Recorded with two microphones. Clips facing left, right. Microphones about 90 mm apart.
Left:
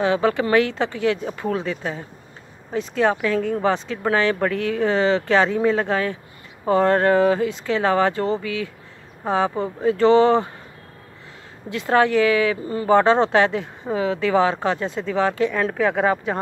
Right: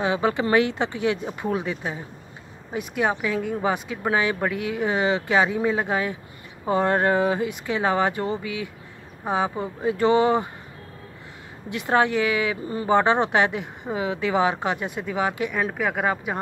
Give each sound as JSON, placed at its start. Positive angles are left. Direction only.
{"t": 0.0, "sound": "speech", "side_deg": -20}
{"t": 11.7, "sound": "speech", "side_deg": -20}